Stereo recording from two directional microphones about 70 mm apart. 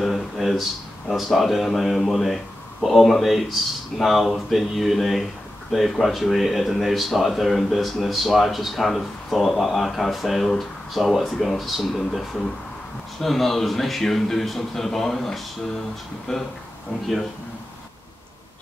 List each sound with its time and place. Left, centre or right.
0.0 s speech: centre